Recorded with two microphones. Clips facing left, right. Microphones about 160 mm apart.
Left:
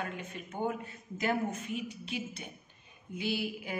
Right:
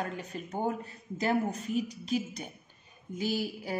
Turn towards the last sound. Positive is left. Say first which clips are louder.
# right 2 dB
turn(degrees=-40)  # may be behind; listen again after turning